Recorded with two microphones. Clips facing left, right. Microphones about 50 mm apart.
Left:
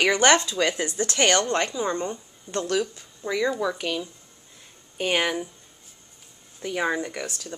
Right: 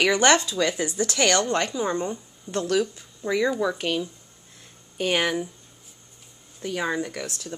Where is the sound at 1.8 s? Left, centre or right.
Centre.